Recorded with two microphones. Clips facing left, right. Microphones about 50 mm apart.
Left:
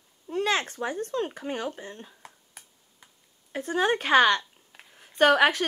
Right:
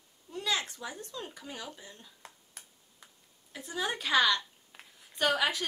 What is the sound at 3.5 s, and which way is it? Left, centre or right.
A woman's voice, left.